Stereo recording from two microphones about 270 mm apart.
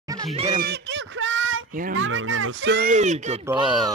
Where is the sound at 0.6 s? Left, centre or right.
Right.